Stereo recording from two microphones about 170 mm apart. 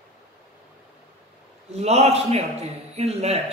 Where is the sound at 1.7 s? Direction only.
40° right (ahead or behind).